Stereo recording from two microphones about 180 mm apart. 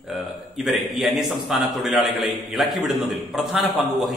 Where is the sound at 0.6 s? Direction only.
Centre (ahead or behind).